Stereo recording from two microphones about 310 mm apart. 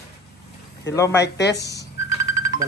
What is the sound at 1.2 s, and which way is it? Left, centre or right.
Speech, left.